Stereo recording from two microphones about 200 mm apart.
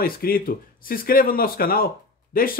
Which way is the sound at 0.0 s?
50° left (ahead or behind).